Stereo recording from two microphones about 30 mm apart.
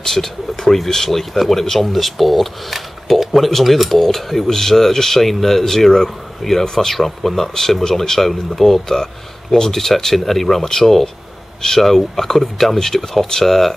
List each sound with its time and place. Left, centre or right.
0.0 s speech: centre